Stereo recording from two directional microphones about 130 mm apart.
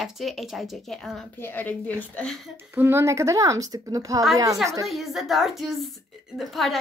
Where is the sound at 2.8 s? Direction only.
20° right (ahead or behind).